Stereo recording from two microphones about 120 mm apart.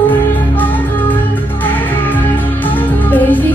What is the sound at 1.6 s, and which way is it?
Music, 15° left (ahead or behind).